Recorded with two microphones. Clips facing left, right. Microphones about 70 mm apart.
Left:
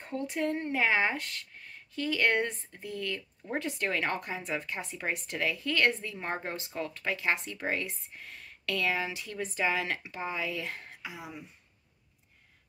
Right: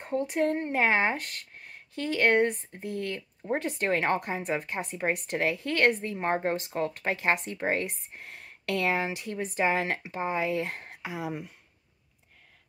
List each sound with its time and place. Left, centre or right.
0.0 s speech: right
6.1 s speech: right
7.8 s speech: right